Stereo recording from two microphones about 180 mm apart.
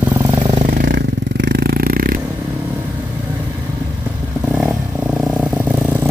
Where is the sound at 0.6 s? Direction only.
60° right (ahead or behind).